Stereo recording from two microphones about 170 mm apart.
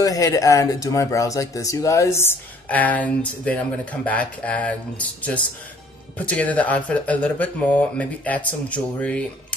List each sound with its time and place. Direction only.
0.0 s speech: 20° left (ahead or behind)